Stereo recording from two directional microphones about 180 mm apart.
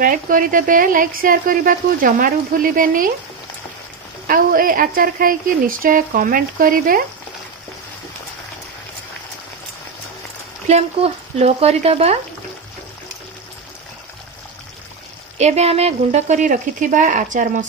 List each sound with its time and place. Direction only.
0.0 s speech: 50° right (ahead or behind)
4.3 s speech: 50° right (ahead or behind)
10.7 s speech: 35° right (ahead or behind)
15.3 s speech: 35° right (ahead or behind)